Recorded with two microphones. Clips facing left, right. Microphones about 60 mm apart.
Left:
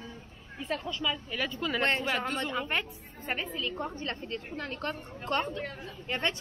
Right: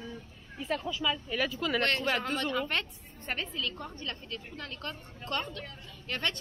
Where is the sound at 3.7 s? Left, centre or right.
Left.